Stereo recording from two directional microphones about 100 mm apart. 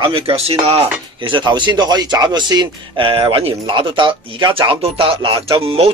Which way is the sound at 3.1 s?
65° right (ahead or behind).